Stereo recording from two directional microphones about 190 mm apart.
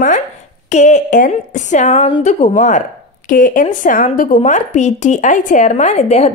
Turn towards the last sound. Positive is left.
turn(degrees=35)  # may be behind; listen again after turning